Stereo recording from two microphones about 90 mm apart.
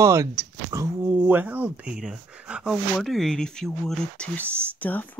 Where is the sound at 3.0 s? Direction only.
5° left (ahead or behind).